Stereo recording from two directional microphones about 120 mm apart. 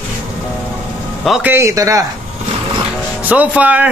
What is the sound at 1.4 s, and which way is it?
Speech, 20° right (ahead or behind).